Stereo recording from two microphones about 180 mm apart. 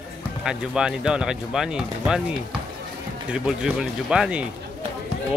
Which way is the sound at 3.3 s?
5° right (ahead or behind).